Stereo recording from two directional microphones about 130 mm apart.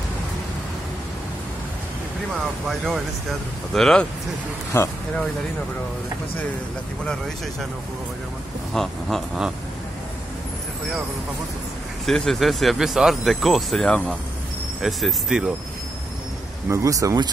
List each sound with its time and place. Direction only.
3.7 s speech: 5° left (ahead or behind)
4.7 s speech: 20° left (ahead or behind)
8.7 s speech: centre (ahead or behind)
12.1 s speech: centre (ahead or behind)
16.6 s speech: 25° right (ahead or behind)